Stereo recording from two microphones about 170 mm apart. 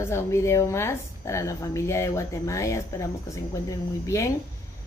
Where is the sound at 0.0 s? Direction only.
15° left (ahead or behind).